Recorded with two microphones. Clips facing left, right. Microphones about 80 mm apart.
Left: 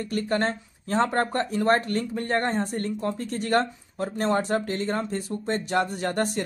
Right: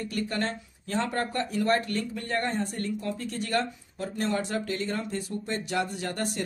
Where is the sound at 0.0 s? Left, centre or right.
Left.